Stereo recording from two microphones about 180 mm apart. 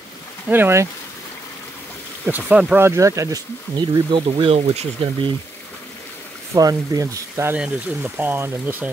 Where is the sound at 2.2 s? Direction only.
10° right (ahead or behind); by 5.3 s 35° right (ahead or behind).